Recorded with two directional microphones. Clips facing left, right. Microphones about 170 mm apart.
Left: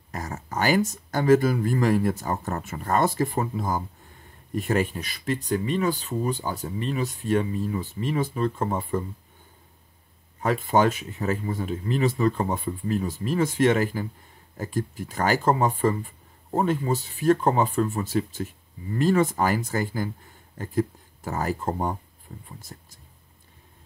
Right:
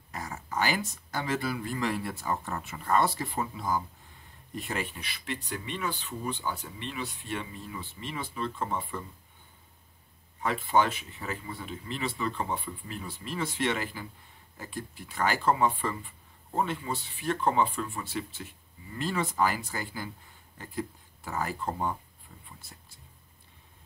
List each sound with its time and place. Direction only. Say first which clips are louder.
0.1 s speech: left 4 dB; 45° left (ahead or behind)
10.4 s speech: left 5 dB; 40° left (ahead or behind)